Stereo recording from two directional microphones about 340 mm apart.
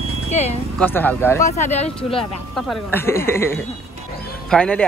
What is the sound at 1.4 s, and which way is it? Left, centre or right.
Speech, left.